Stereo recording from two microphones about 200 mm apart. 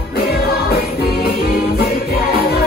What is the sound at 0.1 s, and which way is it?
Music, 50° left (ahead or behind).